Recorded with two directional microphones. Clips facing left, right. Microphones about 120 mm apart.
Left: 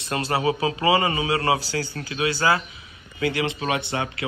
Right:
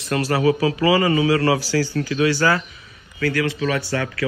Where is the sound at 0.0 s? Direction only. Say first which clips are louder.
Right 4 dB; 25° left (ahead or behind).